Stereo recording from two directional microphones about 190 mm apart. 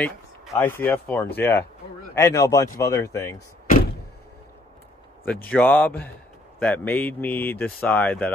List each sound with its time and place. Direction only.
0.6 s speech: 10° left (ahead or behind)
3.6 s door: 50° left (ahead or behind)
5.2 s speech: 10° left (ahead or behind)